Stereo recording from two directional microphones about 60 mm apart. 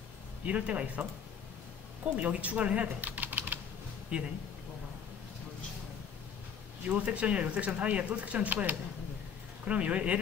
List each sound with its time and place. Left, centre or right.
0.5 s speech: right
2.0 s speech: right
6.9 s speech: right